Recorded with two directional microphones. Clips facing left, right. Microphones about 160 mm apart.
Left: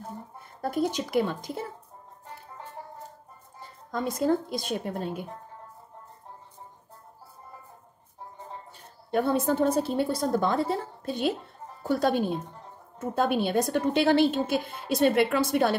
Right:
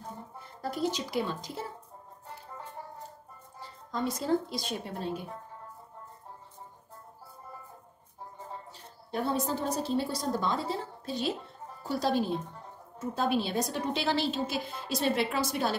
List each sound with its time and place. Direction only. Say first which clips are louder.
0.6 s a woman's voice: left 4 dB; 50° left (ahead or behind)
3.9 s a woman's voice: left 3 dB; 50° left (ahead or behind)
8.7 s a woman's voice: left 8 dB; 55° left (ahead or behind)